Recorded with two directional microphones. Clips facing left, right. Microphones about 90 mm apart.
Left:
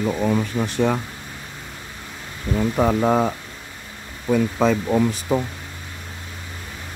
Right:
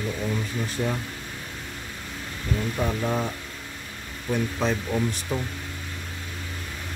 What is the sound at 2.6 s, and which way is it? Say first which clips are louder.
Speech: left 9 dB; 90° left.